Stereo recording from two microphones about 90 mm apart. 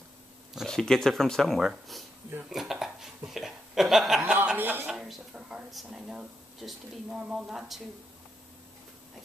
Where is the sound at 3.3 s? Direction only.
5° right (ahead or behind).